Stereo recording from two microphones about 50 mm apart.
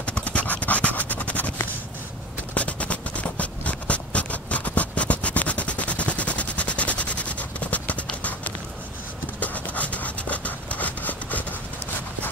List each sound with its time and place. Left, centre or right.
0.0 s scratch: left
2.5 s writing: left
8.2 s clip-clop: left
9.4 s rub: left